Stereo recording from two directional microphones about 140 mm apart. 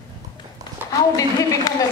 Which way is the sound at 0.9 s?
25° left (ahead or behind).